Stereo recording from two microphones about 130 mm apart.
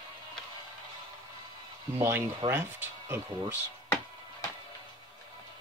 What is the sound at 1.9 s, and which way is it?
Speech, 20° right (ahead or behind).